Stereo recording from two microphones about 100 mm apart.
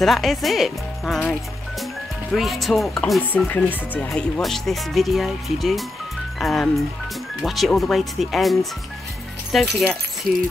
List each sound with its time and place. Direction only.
0.0 s speech: centre (ahead or behind)
2.3 s speech: centre (ahead or behind); by 4.1 s 20° left (ahead or behind)
4.1 s speech: centre (ahead or behind)